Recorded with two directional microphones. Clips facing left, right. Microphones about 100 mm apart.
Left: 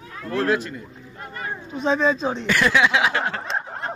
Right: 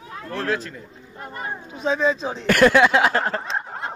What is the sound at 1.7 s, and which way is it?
Speech, 5° right (ahead or behind).